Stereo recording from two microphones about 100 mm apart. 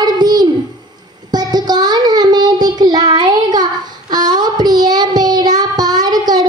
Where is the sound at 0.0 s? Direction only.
40° right (ahead or behind).